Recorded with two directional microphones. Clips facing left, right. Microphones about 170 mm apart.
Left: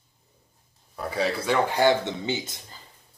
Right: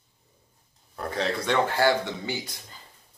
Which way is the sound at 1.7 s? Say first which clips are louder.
Left 2 dB; 20° left (ahead or behind).